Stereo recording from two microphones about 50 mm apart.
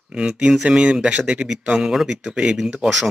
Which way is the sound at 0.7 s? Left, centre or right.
Right.